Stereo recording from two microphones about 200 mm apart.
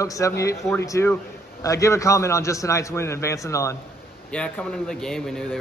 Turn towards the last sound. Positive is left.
turn(degrees=5)  # may be behind; listen again after turning